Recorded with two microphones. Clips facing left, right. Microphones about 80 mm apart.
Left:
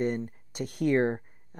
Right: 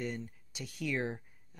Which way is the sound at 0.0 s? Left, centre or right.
Left.